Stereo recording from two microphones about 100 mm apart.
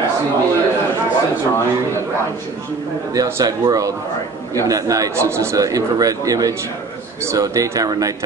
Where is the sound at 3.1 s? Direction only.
35° right (ahead or behind).